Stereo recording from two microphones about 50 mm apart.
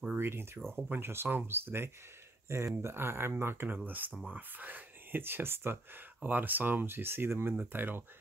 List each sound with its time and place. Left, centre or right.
0.1 s speech: right
2.4 s speech: right
3.6 s speech: right